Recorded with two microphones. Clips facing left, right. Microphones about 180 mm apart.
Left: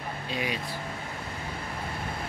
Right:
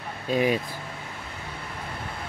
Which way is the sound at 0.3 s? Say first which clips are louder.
Right 10 dB; 45° right (ahead or behind).